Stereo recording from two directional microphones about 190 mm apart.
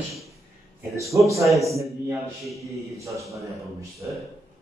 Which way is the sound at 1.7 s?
Centre (ahead or behind).